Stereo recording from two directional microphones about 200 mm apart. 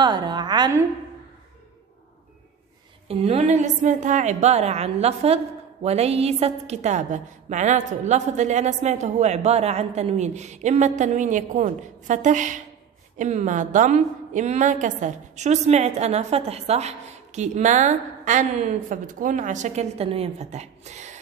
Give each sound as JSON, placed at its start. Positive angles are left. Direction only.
{"t": 0.0, "sound": "a woman's voice", "side_deg": -20}
{"t": 3.1, "sound": "a woman's voice", "side_deg": -30}